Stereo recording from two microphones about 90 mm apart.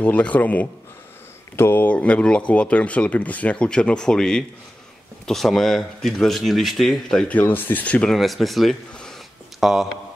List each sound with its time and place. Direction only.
0.0 s speech: 15° left (ahead or behind)
7.3 s speech: 20° left (ahead or behind)
8.1 s speech: centre (ahead or behind)